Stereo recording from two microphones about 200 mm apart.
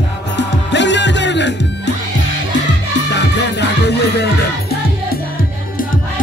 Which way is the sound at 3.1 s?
60° left (ahead or behind).